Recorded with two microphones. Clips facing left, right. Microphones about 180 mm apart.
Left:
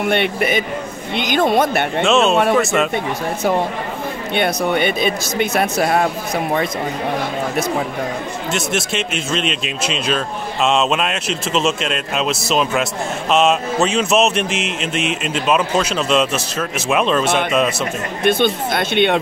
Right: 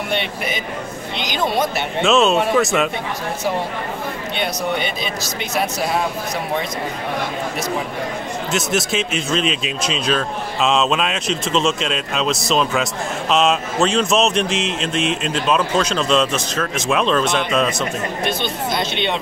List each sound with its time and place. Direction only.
0.1 s speech: 55° left (ahead or behind)
2.0 s speech: centre (ahead or behind)
4.4 s speech: 55° left (ahead or behind)
8.5 s speech: centre (ahead or behind)
18.2 s speech: 55° left (ahead or behind)